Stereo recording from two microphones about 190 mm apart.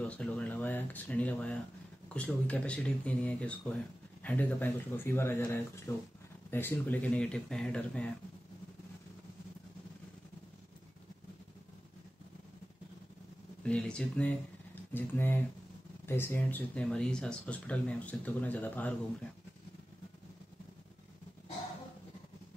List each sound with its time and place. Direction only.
0.0 s speech: 5° left (ahead or behind)
13.6 s speech: 5° left (ahead or behind)